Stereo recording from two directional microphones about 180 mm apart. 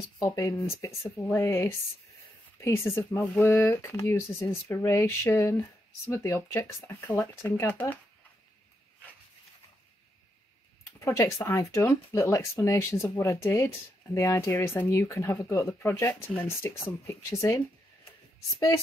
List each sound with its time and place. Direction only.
0.2 s speech: 15° left (ahead or behind)
2.9 s speech: 15° left (ahead or behind)
11.0 s speech: 15° left (ahead or behind)